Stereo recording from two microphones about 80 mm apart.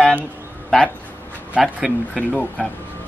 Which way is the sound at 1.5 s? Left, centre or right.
Centre.